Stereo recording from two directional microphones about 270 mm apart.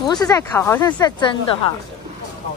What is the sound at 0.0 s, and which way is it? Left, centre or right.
Speech, centre.